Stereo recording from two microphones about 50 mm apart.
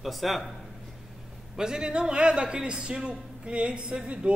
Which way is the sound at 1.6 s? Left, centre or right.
Centre.